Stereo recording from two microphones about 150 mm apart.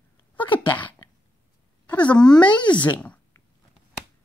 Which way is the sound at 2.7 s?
10° left (ahead or behind).